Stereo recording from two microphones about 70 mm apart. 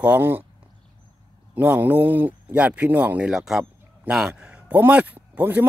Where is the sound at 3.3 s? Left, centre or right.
Centre.